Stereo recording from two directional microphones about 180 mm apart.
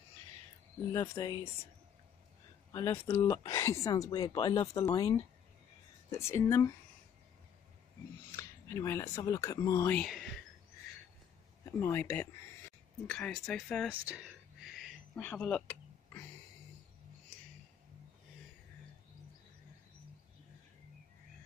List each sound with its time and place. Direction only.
0.9 s speech: 20° left (ahead or behind)
2.7 s speech: 15° left (ahead or behind)
8.3 s speech: 15° left (ahead or behind)
9.9 s speech: centre (ahead or behind)
11.6 s speech: 15° left (ahead or behind)
14.0 s a sound: 5° right (ahead or behind)